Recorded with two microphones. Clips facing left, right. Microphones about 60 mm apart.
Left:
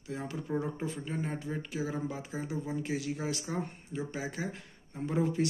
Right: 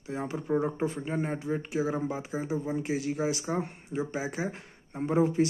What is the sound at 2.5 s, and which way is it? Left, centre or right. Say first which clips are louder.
Speech: right 4 dB; centre.